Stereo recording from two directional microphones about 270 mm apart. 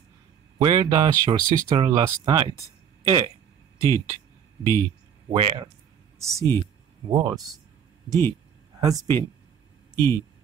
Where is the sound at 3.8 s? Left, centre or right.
Centre.